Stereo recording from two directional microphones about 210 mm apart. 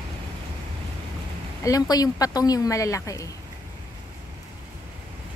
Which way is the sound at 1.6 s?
15° left (ahead or behind).